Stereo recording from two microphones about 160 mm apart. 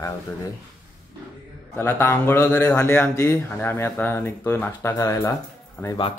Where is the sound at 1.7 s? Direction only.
15° left (ahead or behind).